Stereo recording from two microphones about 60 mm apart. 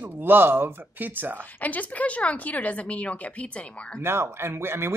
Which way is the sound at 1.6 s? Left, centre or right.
Left.